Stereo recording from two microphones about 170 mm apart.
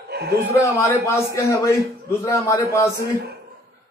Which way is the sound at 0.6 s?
15° left (ahead or behind).